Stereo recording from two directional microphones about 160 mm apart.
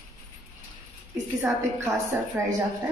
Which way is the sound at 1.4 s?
15° right (ahead or behind).